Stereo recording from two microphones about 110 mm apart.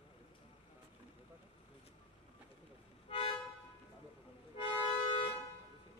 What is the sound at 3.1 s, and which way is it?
Music, 55° left (ahead or behind).